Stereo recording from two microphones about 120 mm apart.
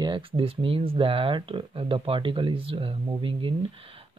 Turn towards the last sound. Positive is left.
turn(degrees=-45)  # may be behind; listen again after turning